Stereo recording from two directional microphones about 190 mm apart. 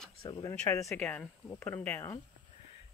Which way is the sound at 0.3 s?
20° left (ahead or behind).